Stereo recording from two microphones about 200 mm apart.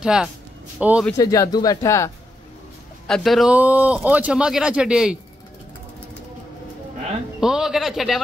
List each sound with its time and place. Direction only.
0.0 s a man's voice: 5° right (ahead or behind)
1.1 s speech: 15° left (ahead or behind)
3.1 s speech: centre (ahead or behind)
7.3 s speech: 5° right (ahead or behind)